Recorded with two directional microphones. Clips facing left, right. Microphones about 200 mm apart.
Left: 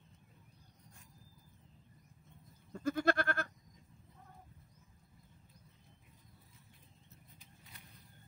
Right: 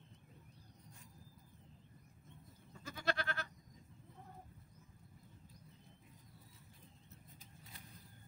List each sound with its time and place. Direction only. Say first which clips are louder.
2.7 s goat: left 9 dB; 50° left (ahead or behind)